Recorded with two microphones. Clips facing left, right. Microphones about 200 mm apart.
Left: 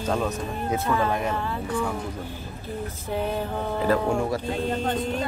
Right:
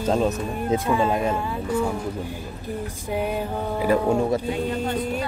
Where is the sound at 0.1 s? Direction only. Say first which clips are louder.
Right 4 dB; 25° right (ahead or behind).